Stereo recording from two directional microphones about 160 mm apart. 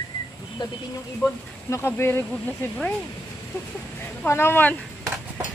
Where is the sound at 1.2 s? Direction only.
15° left (ahead or behind).